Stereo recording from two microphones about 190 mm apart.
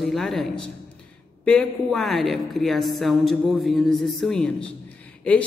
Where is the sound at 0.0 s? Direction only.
Centre (ahead or behind).